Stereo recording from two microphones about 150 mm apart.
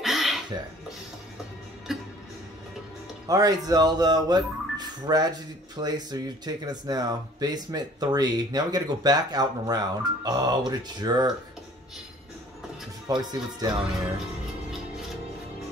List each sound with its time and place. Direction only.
0.0 s a sound: centre (ahead or behind)
1.9 s music: 5° right (ahead or behind)
3.3 s speech: 25° right (ahead or behind)
13.1 s speech: 25° right (ahead or behind)